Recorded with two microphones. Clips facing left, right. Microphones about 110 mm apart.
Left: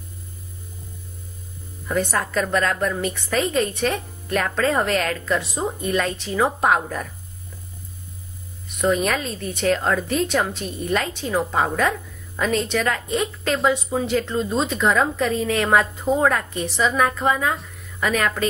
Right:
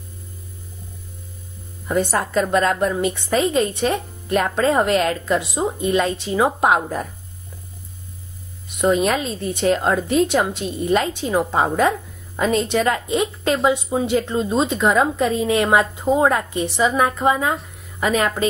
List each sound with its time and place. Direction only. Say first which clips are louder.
1.9 s a woman's voice: right 3 dB; 25° right (ahead or behind)
5.4 s speech: right 4 dB; 10° right (ahead or behind)
5.9 s a woman's voice: right 4 dB; 20° right (ahead or behind)
8.8 s a woman's voice: right 3 dB; 25° right (ahead or behind)